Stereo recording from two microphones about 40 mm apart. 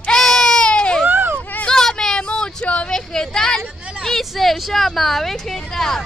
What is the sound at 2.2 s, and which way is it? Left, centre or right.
Vehicle, left.